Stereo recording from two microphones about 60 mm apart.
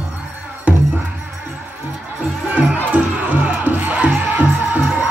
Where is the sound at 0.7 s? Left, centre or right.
Right.